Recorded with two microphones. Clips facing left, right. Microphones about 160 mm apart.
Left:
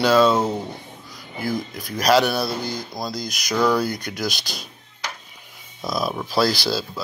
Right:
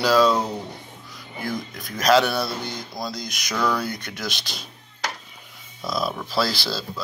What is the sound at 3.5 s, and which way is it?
Speech, 30° left (ahead or behind).